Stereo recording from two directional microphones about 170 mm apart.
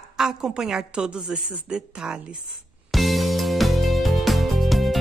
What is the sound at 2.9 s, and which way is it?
Music, centre (ahead or behind).